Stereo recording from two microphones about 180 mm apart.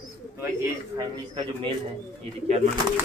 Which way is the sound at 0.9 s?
25° right (ahead or behind).